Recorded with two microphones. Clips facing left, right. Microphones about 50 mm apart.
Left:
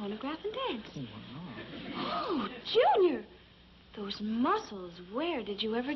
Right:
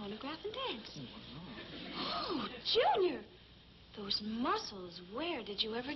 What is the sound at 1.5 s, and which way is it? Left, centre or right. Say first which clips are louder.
Speech: left 5 dB; centre.